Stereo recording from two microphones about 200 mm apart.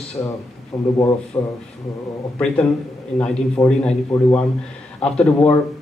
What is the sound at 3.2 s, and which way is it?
A man's voice, 5° left (ahead or behind).